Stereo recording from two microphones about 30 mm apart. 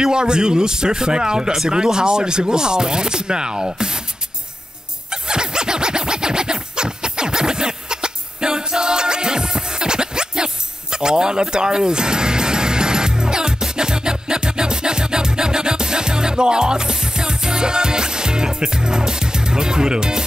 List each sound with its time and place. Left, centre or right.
0.0 s speech: right
5.1 s music: right